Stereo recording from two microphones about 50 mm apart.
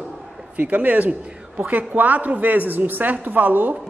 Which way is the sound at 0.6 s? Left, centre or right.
Right.